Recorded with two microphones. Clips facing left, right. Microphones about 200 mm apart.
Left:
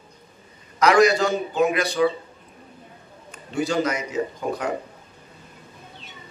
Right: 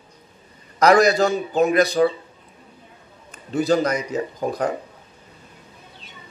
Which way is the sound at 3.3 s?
35° right (ahead or behind).